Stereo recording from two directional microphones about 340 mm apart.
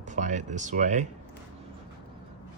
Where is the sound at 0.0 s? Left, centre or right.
Right.